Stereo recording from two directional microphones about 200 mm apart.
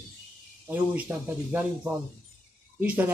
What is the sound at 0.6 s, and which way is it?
Speech, 10° right (ahead or behind).